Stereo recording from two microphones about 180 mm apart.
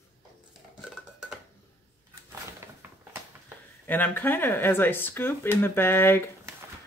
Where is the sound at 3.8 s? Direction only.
10° left (ahead or behind).